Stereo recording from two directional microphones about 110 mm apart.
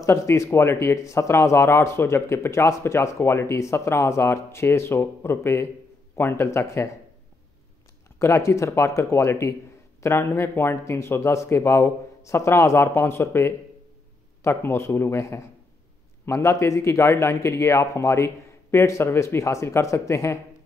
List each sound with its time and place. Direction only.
0.0 s speech: 25° left (ahead or behind)
8.2 s speech: 25° left (ahead or behind)